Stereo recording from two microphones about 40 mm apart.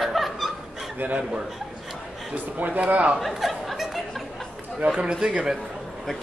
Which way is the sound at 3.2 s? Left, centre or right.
Centre.